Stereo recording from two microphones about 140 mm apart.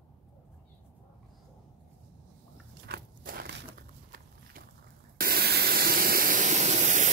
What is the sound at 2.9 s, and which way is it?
Biting, 90° right.